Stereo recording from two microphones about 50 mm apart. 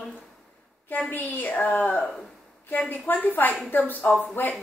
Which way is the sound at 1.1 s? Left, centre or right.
Left.